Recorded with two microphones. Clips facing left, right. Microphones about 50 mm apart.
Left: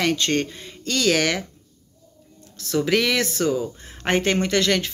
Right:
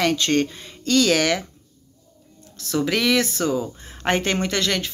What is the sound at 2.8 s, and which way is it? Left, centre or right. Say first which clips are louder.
Speech: even; left.